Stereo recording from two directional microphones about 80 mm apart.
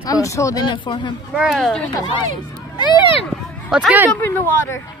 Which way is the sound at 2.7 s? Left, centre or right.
Left.